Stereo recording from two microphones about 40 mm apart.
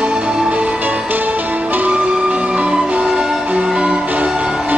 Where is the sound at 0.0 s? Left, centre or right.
Right.